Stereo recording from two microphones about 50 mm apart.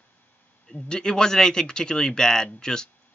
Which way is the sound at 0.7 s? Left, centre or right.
Centre.